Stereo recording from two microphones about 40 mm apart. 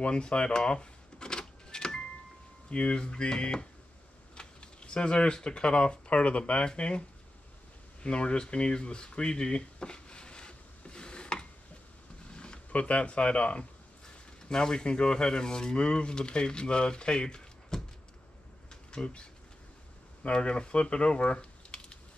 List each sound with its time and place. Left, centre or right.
0.0 s speech: left
1.7 s vehicle: centre
2.7 s speech: left
8.0 s a sound: left
12.7 s speech: left
18.7 s a sound: left
20.2 s speech: left